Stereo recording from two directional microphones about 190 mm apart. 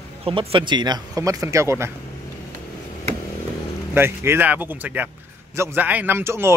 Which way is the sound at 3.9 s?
10° right (ahead or behind).